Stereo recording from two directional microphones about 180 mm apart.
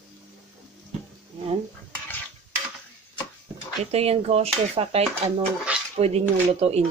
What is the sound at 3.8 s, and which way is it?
Speech, 35° right (ahead or behind).